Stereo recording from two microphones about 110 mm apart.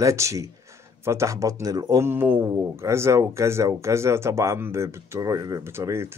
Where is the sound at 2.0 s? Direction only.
20° right (ahead or behind).